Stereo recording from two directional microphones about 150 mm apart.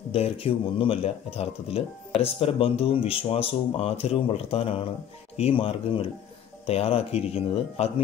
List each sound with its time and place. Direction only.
0.1 s speech: 40° left (ahead or behind)